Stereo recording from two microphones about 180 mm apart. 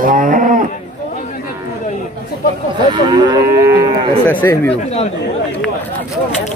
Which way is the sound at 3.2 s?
20° right (ahead or behind).